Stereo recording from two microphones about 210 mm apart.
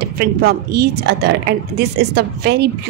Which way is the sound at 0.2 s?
50° right (ahead or behind).